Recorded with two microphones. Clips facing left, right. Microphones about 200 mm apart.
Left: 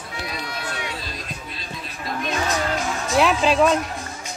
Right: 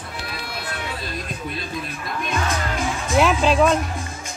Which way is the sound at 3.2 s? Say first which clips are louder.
Right 1 dB; centre (ahead or behind).